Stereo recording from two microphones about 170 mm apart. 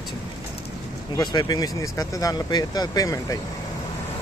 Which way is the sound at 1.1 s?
25° left (ahead or behind).